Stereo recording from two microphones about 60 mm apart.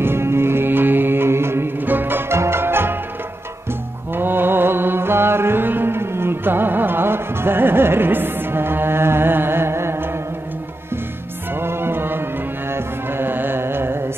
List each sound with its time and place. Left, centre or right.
0.0 s music: right
4.1 s music: right
11.5 s music: right